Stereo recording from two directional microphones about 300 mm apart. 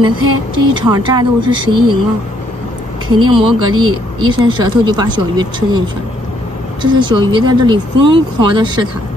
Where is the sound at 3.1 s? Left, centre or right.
Centre.